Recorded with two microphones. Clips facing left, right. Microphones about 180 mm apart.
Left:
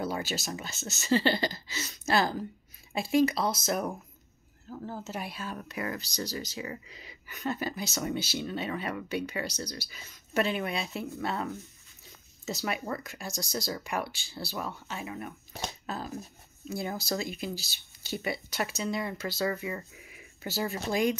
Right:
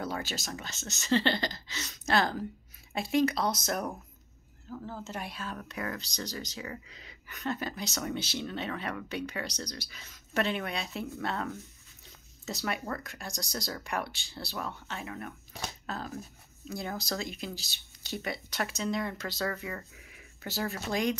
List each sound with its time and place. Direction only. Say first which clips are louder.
0.0 s speech: left 3 dB; 10° left (ahead or behind)
4.6 s speech: left 1 dB; 15° left (ahead or behind)